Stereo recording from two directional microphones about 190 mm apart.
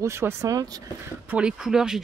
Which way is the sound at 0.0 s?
15° right (ahead or behind).